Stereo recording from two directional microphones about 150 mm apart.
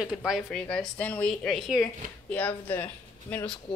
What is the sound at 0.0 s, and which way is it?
Speech, 5° right (ahead or behind).